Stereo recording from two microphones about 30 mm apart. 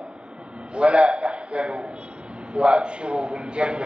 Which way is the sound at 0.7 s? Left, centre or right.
Right.